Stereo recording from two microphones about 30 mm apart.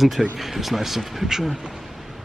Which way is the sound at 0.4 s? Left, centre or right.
Centre.